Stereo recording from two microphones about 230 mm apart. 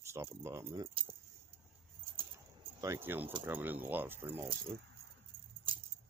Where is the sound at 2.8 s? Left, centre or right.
Centre.